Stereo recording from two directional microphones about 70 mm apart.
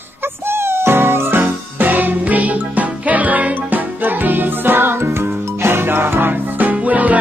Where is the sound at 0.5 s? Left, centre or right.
Right.